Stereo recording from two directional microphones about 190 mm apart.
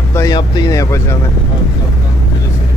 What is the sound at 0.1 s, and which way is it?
Speech, 20° left (ahead or behind).